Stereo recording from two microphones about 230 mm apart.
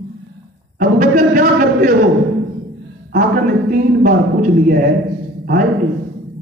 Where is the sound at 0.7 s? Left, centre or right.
Right.